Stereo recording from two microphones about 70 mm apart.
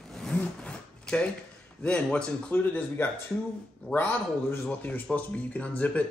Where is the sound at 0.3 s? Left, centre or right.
Centre.